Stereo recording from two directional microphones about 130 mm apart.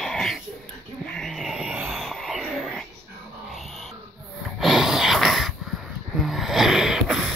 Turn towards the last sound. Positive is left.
turn(degrees=-5)  # may be behind; listen again after turning